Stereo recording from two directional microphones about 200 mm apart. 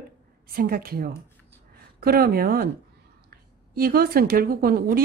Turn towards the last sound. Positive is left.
turn(degrees=-50)  # may be behind; listen again after turning